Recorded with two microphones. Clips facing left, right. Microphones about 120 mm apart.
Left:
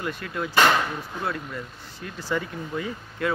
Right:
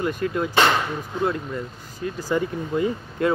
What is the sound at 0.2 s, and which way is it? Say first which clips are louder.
Speech: right 1 dB; 25° right (ahead or behind).